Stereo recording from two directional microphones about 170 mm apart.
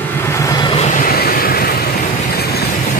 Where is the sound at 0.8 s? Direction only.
50° left (ahead or behind).